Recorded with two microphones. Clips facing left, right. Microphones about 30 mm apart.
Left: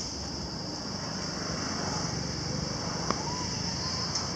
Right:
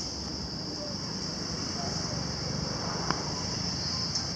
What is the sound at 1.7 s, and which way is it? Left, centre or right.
Vehicle, centre.